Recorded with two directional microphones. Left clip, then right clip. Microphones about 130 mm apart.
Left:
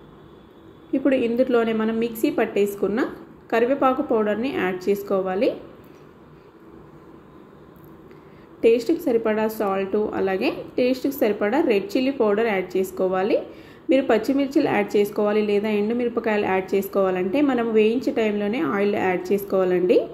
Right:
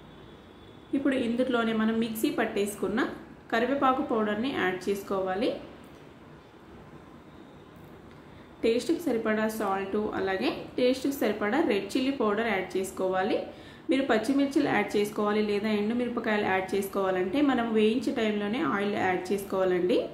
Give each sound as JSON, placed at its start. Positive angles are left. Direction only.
{"t": 1.0, "sound": "speech", "side_deg": 25}
{"t": 8.5, "sound": "speech", "side_deg": 25}